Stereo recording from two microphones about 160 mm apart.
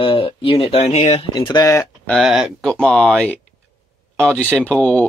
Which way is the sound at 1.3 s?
25° left (ahead or behind).